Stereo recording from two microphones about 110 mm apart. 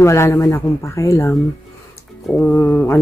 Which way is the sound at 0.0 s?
25° left (ahead or behind).